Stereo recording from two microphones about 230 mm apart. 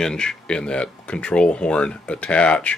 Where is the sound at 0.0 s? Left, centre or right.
Centre.